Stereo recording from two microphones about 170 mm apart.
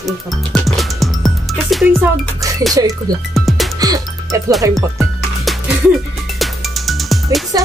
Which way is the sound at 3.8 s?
20° right (ahead or behind).